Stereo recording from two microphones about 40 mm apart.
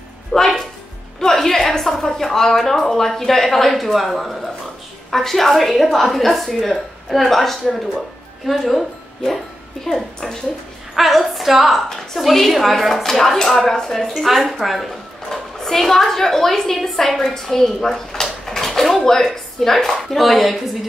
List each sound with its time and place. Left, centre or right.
0.3 s music: left
1.2 s a woman's voice: centre
9.8 s a woman's voice: centre
11.0 s a woman's voice: centre
14.6 s a sound: centre
15.3 s a woman's voice: centre
18.2 s drawer open or close: centre